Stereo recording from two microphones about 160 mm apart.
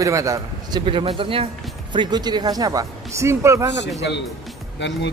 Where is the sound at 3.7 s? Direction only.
90° left.